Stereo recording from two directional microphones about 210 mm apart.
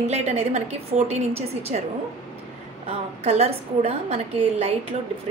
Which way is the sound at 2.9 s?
30° right (ahead or behind).